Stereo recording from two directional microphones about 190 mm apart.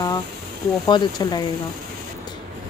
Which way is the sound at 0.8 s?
20° left (ahead or behind).